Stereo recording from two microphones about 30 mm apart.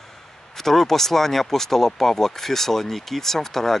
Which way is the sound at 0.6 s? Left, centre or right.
Centre.